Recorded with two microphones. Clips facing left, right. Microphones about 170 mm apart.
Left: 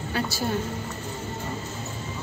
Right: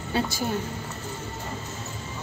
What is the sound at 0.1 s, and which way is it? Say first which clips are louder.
Speech: right 2 dB; 15° right (ahead or behind).